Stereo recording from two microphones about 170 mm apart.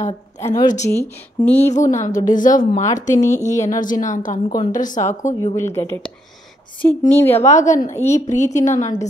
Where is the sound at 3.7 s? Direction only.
50° left (ahead or behind).